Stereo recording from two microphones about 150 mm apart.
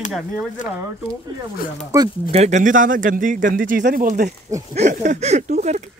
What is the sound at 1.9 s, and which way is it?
Speech, 20° right (ahead or behind).